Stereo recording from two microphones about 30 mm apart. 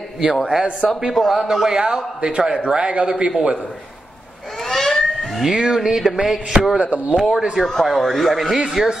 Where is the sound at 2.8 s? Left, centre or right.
Right.